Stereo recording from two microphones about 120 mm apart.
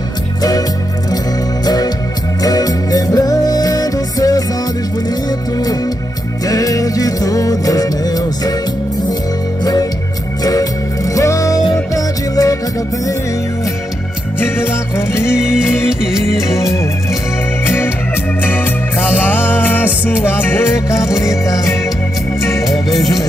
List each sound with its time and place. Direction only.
0.4 s music: 30° left (ahead or behind)
6.4 s music: 30° left (ahead or behind)
9.6 s music: 30° left (ahead or behind)
14.4 s music: 20° left (ahead or behind)
15.3 s music: 5° right (ahead or behind)
16.3 s music: 25° left (ahead or behind)
22.7 s music: centre (ahead or behind)